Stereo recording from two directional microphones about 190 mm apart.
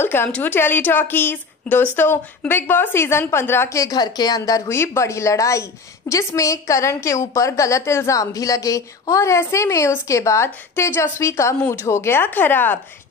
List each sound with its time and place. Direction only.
0.0 s a woman's voice: 10° left (ahead or behind)